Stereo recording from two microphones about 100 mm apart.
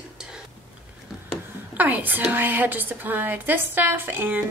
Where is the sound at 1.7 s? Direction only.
15° right (ahead or behind).